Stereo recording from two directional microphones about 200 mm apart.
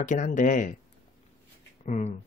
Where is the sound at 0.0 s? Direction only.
40° left (ahead or behind).